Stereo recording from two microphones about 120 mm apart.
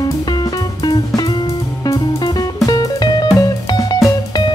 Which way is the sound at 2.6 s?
35° left (ahead or behind).